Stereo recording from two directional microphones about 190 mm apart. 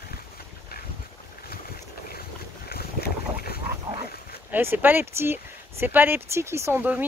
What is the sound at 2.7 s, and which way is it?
Boat, 55° left (ahead or behind).